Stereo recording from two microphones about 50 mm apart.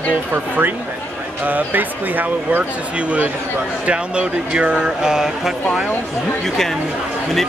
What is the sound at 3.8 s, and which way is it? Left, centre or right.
Speech, right.